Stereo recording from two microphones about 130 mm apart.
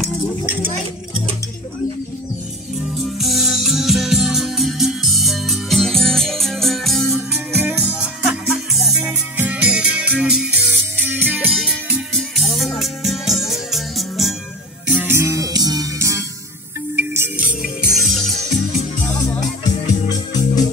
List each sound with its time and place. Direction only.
2.8 s music: centre (ahead or behind)
7.3 s music: 15° right (ahead or behind)
15.0 s music: 20° right (ahead or behind)
17.6 s music: centre (ahead or behind)
19.0 s music: 25° left (ahead or behind)
19.9 s organ: 30° left (ahead or behind)